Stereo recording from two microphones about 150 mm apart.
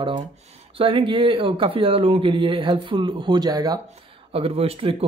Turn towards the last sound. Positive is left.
turn(degrees=-40)  # may be behind; listen again after turning